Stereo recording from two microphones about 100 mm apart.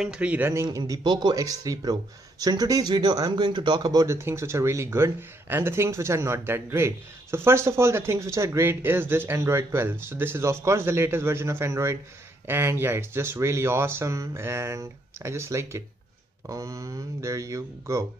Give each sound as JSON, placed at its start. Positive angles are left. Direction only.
{"t": 0.0, "sound": "speech", "side_deg": -10}
{"t": 0.7, "sound": "speech", "side_deg": -35}